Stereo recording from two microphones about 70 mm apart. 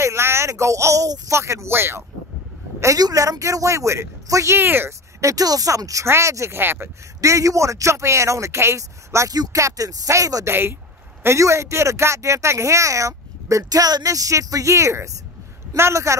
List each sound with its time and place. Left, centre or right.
0.0 s speech: right
1.3 s speech: right
3.0 s speech: right
5.2 s speech: right
6.0 s speech: right
7.2 s speech: right
9.3 s speech: right
10.4 s speech: right
11.2 s speech: right